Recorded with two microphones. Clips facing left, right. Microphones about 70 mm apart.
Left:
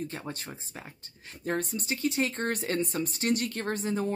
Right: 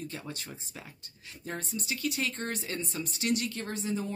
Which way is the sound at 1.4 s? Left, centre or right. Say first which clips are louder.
Left 6 dB; left.